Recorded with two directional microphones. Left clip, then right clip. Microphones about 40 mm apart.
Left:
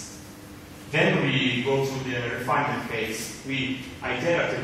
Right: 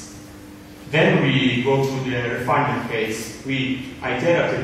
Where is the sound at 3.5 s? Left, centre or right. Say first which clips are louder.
Right 4 dB; centre.